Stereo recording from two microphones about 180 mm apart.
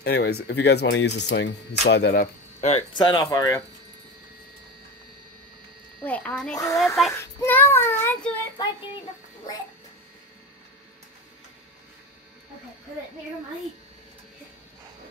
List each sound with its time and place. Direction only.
0.0 s speech: 65° left (ahead or behind)
2.6 s speech: 40° left (ahead or behind)
3.0 s speech: 25° left (ahead or behind)
6.0 s a child's voice: 10° left (ahead or behind)
6.5 s speech: 20° left (ahead or behind)
7.1 s child singing: 15° left (ahead or behind)